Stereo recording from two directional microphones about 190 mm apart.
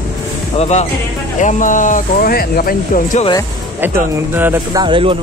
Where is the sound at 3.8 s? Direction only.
10° right (ahead or behind).